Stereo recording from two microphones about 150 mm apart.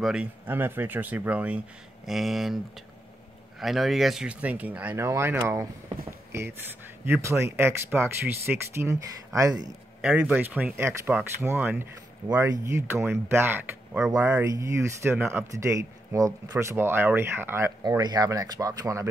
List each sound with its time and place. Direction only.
0.0 s speech: 5° right (ahead or behind)
6.0 s a sound: 15° right (ahead or behind)
7.1 s speech: 20° right (ahead or behind)
10.0 s speech: 10° right (ahead or behind)
17.8 s speech: 25° right (ahead or behind)